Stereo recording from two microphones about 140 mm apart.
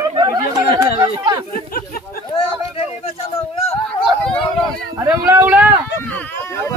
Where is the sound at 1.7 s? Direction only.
90° left.